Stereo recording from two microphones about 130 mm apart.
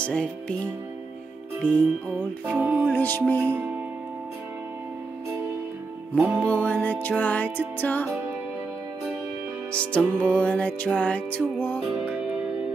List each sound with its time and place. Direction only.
0.0 s music: 10° left (ahead or behind)
1.6 s music: 10° left (ahead or behind)
2.4 s music: 10° right (ahead or behind)
2.9 s music: 15° left (ahead or behind)
6.1 s music: 10° right (ahead or behind)
6.4 s music: 10° left (ahead or behind)
9.7 s music: 10° left (ahead or behind)